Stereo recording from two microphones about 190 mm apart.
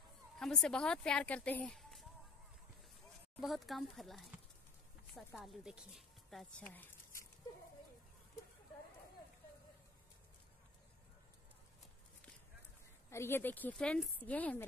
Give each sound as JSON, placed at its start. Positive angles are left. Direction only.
{"t": 0.4, "sound": "speech", "side_deg": 5}
{"t": 3.3, "sound": "speech", "side_deg": 0}
{"t": 5.4, "sound": "speech", "side_deg": 0}
{"t": 13.1, "sound": "speech", "side_deg": 15}